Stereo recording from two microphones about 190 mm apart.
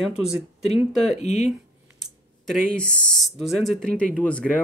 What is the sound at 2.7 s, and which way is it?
Speech, centre (ahead or behind).